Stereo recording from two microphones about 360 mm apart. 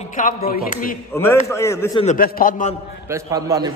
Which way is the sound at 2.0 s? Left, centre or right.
Left.